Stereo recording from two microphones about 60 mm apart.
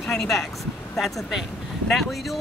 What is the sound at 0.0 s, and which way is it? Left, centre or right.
Speech, centre.